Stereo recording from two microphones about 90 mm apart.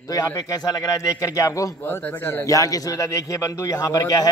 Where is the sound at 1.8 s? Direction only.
20° left (ahead or behind).